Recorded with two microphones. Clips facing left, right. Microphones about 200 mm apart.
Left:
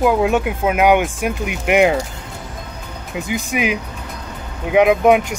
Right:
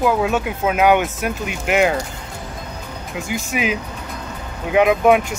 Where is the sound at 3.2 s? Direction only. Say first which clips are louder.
Left 2 dB; 15° left (ahead or behind).